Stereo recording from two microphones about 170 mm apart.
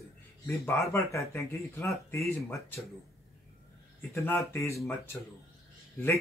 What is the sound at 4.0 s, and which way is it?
Speech, 15° left (ahead or behind).